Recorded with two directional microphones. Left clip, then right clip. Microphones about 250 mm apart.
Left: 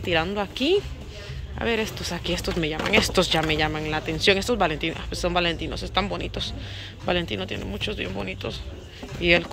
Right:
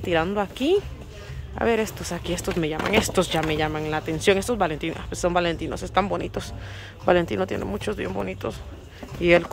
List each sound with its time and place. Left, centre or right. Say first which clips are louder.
0.0 s speech: right 1 dB; centre